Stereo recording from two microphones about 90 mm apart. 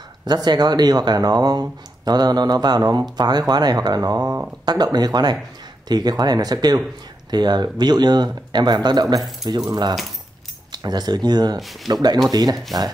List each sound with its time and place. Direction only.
0.2 s speech: 50° right (ahead or behind)